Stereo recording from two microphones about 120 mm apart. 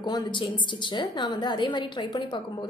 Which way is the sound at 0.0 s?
35° left (ahead or behind).